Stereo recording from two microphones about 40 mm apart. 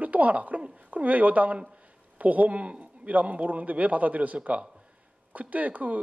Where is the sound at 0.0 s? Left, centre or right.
Right.